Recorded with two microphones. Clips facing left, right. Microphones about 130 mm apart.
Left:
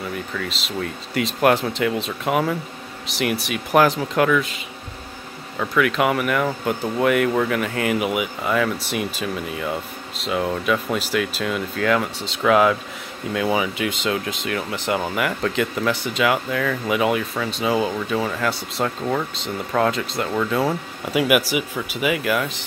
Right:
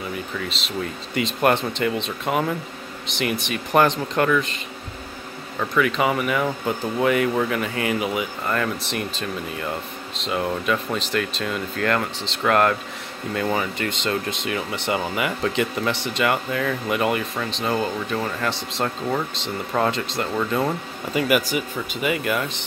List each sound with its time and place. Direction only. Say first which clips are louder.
0.0 s speech: left 1 dB; 5° right (ahead or behind)